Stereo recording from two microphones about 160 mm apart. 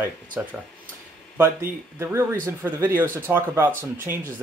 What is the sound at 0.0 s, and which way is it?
Speech, 10° right (ahead or behind).